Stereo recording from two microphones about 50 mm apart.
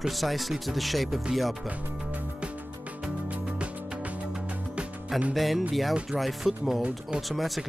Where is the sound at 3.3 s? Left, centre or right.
Right.